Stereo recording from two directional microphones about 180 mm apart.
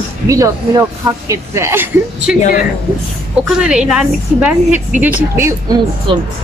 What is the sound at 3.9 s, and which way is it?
A woman's voice, 5° right (ahead or behind).